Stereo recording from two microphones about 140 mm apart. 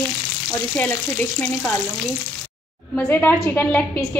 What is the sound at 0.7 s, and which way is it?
Speech, 10° left (ahead or behind).